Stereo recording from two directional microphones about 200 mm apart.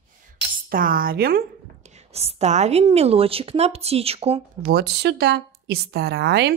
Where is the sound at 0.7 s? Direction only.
45° right (ahead or behind).